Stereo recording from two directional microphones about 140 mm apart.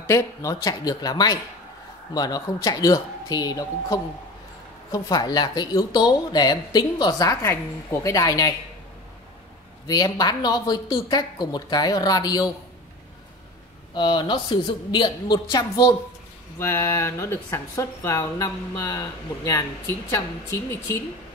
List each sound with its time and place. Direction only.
0.0 s speech: 20° left (ahead or behind)
9.8 s speech: 25° left (ahead or behind)
13.9 s a woman's voice: 35° left (ahead or behind)
16.5 s speech: 15° left (ahead or behind)